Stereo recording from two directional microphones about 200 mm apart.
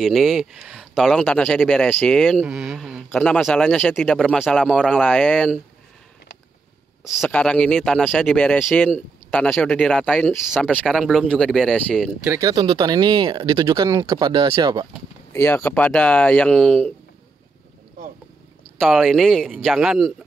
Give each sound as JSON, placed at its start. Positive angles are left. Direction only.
{"t": 0.0, "sound": "speech", "side_deg": 0}
{"t": 7.2, "sound": "speech", "side_deg": 5}
{"t": 12.3, "sound": "speech", "side_deg": -15}
{"t": 15.3, "sound": "speech", "side_deg": 10}
{"t": 18.8, "sound": "speech", "side_deg": 0}